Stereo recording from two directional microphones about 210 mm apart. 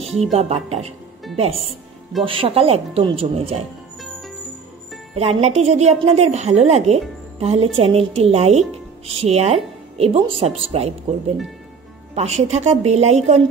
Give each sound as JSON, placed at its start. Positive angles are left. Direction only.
{"t": 0.2, "sound": "a woman's voice", "side_deg": -30}
{"t": 5.1, "sound": "a woman's voice", "side_deg": -30}
{"t": 12.2, "sound": "a woman's voice", "side_deg": -30}